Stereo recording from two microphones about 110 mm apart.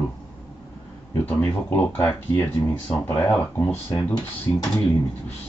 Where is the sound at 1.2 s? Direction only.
15° left (ahead or behind).